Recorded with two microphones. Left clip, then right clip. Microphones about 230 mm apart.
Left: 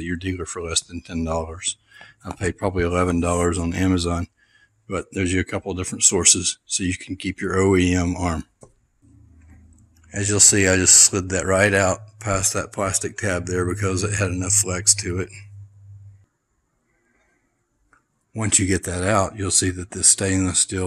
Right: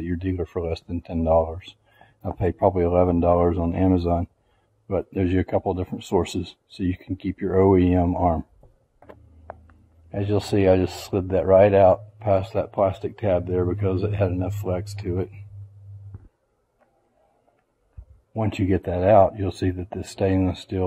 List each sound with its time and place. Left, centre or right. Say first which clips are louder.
0.0 s speech: even; centre
1.2 s speech: right 7 dB; left
1.9 s a sound: left 9 dB; centre
2.3 s speech: right 3 dB; centre
10.5 s speech: right 1 dB; centre
18.3 s speech: left 2 dB; centre